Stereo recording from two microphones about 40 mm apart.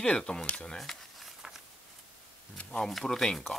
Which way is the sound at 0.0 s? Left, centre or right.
Left.